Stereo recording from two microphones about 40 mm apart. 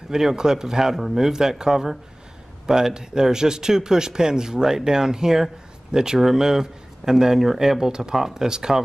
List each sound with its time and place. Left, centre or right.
0.1 s speech: centre